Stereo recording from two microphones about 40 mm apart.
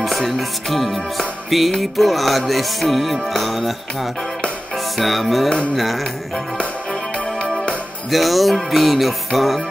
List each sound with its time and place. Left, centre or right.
0.4 s music: centre
6.6 s music: left
8.1 s music: centre